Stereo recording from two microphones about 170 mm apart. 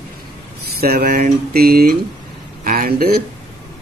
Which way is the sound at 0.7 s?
70° right (ahead or behind).